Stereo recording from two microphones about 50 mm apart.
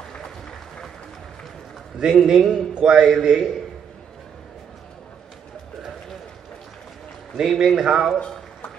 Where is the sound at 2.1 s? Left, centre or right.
Centre.